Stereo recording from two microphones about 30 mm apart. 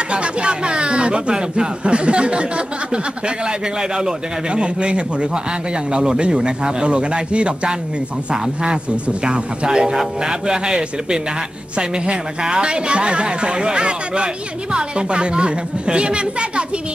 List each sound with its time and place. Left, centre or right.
0.1 s speech: right
9.2 s a man's voice: right